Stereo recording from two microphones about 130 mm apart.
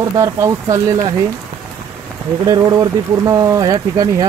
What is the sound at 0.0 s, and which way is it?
Speech, 25° right (ahead or behind).